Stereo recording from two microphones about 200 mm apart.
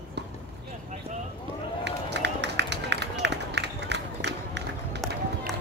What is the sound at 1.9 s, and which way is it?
Run, 60° right (ahead or behind).